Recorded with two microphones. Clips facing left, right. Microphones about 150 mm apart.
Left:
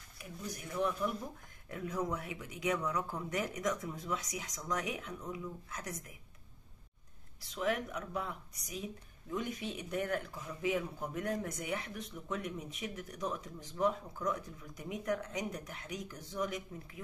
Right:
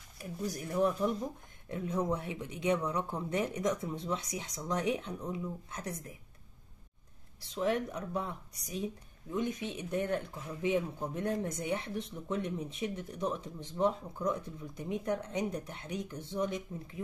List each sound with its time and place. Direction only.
0.2 s speech: 40° right (ahead or behind)
7.3 s speech: 30° right (ahead or behind)